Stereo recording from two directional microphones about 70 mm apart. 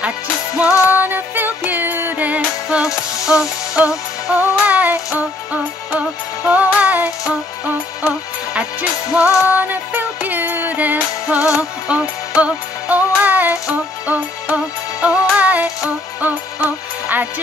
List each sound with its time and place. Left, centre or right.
0.8 s music: right; by 4.4 s centre
4.4 s music: right
11.2 s music: centre